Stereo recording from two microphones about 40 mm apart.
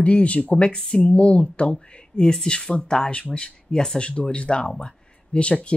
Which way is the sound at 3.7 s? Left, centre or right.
Centre.